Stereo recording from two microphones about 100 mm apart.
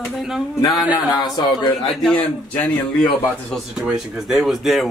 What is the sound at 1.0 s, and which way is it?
Speech, 45° left (ahead or behind).